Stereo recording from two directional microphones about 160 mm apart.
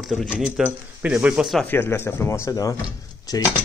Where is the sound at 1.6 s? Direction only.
15° left (ahead or behind).